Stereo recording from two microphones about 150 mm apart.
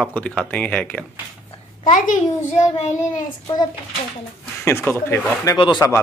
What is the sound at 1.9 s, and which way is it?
A child's voice, 60° left (ahead or behind).